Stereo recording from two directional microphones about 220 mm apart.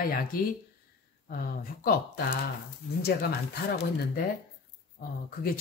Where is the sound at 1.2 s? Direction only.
40° left (ahead or behind).